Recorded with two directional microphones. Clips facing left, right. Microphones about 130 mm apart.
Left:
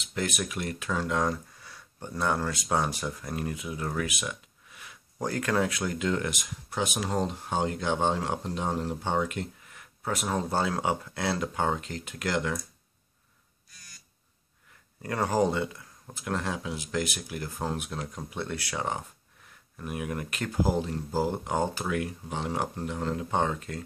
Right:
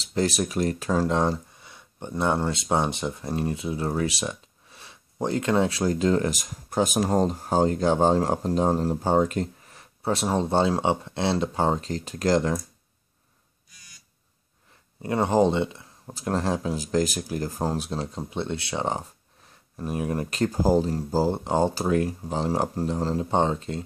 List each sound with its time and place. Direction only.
0.0 s speech: 35° right (ahead or behind)
15.0 s speech: 20° right (ahead or behind)